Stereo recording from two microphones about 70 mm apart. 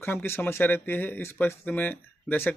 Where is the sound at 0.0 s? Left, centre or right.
Left.